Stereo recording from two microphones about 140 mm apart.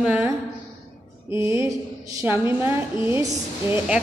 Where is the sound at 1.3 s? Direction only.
20° right (ahead or behind).